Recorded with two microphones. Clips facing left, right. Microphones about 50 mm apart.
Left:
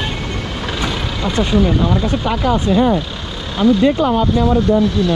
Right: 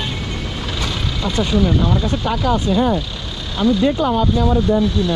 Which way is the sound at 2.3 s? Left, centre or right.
Left.